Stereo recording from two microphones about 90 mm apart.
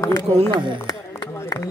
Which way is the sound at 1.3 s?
30° left (ahead or behind).